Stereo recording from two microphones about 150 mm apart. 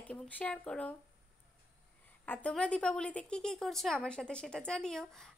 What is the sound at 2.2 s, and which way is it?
A woman's voice, 10° left (ahead or behind).